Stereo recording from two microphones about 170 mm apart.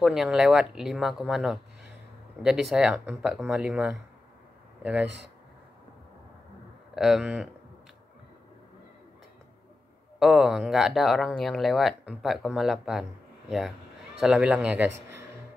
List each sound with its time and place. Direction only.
0.0 s speech: 5° right (ahead or behind)
7.0 s speech: 5° right (ahead or behind)
10.1 s a man's voice: 5° right (ahead or behind)